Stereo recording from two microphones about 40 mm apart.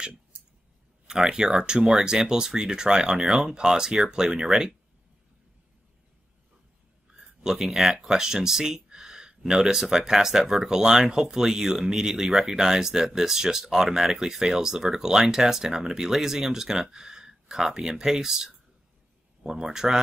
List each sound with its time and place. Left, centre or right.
1.0 s speech: centre
7.2 s speech: centre